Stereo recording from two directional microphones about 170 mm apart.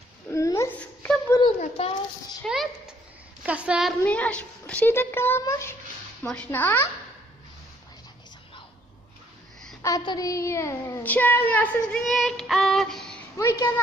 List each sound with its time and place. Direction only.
0.3 s a sound: 15° left (ahead or behind)
1.6 s a sound: 35° left (ahead or behind)
2.4 s a child's voice: centre (ahead or behind)
4.0 s child singing: 10° left (ahead or behind)
6.2 s child singing: 5° left (ahead or behind)
9.8 s child singing: 20° left (ahead or behind); by 13.2 s 5° left (ahead or behind)
13.4 s child singing: 15° left (ahead or behind)